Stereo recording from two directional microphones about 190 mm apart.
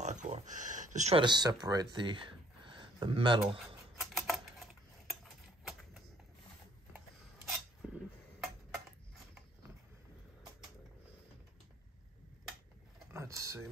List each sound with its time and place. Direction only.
0.0 s a sound: 40° right (ahead or behind)
1.2 s speech: 20° right (ahead or behind)
4.0 s typewriter: centre (ahead or behind)
7.4 s dishes: centre (ahead or behind)
13.1 s typing: 15° right (ahead or behind)